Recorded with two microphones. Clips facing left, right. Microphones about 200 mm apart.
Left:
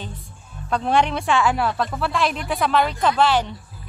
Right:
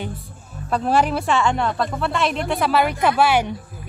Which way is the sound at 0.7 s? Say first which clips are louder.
Right 1 dB; 5° right (ahead or behind).